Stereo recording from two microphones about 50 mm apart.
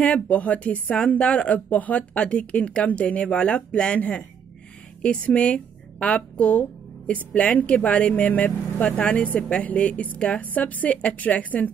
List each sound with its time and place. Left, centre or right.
0.0 s a woman's voice: left